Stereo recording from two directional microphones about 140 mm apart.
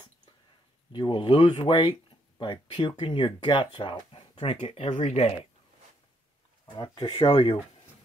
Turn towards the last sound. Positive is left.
turn(degrees=40)  # may be behind; listen again after turning